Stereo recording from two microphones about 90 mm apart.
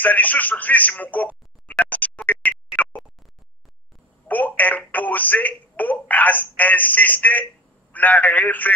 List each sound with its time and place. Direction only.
0.0 s speech: 20° left (ahead or behind)
4.3 s speech: 20° left (ahead or behind)